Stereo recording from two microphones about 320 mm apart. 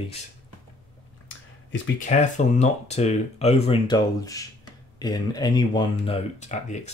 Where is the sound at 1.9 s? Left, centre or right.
Left.